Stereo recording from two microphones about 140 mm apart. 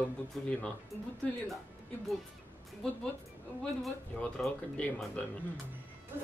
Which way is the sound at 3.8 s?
5° left (ahead or behind).